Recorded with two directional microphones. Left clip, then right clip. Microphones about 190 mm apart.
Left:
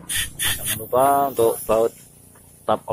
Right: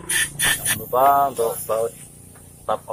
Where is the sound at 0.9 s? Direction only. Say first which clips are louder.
Right 1 dB; 25° left (ahead or behind).